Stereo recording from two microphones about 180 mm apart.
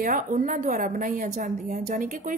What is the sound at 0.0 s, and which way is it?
A woman's voice, 45° right (ahead or behind).